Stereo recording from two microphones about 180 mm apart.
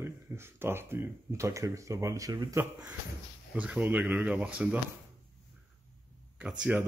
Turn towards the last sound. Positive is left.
turn(degrees=-5)  # may be behind; listen again after turning